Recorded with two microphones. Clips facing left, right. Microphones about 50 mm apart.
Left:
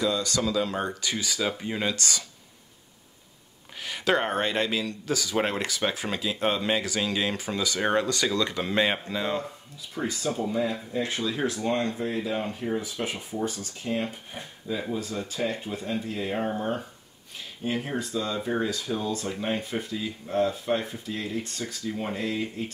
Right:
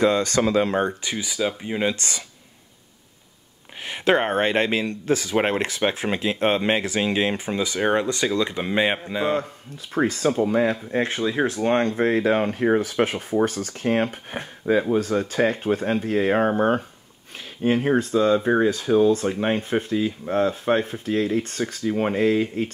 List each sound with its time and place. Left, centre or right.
0.0 s speech: right
1.1 s speech: centre
2.0 s speech: right
3.8 s speech: right
9.9 s speech: right